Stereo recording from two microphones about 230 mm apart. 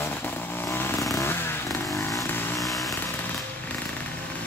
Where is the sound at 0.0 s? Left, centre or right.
Centre.